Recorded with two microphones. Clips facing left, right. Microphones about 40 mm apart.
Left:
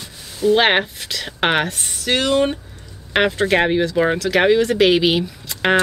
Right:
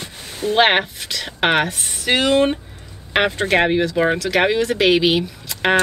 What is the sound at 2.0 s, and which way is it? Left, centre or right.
Speech, centre.